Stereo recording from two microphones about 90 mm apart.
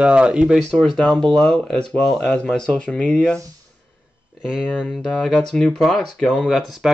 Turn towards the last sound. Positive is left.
turn(degrees=0)  # may be behind; listen again after turning